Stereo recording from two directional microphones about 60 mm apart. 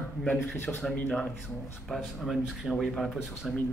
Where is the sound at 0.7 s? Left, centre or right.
Centre.